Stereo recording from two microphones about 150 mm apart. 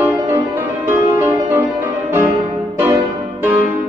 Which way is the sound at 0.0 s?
15° right (ahead or behind).